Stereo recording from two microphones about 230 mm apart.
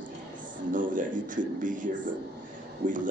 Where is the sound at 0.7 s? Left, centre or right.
Right.